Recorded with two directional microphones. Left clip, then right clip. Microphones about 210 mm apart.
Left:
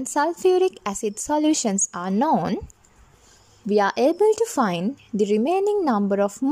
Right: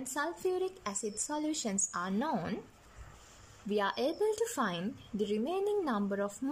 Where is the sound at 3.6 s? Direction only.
35° left (ahead or behind).